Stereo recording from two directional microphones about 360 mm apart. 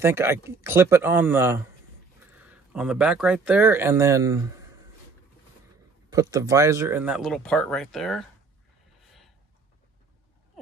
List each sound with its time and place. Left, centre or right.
0.0 s speech: centre
6.1 s speech: centre